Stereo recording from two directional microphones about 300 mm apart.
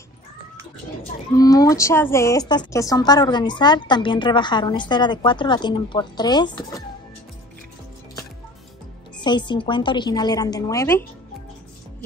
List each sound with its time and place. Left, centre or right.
1.3 s a woman's voice: centre
9.2 s a woman's voice: centre